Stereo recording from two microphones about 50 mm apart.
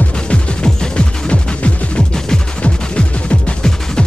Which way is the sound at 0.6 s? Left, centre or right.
Centre.